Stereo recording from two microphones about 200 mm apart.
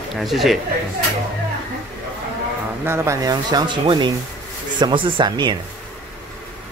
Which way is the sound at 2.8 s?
10° right (ahead or behind).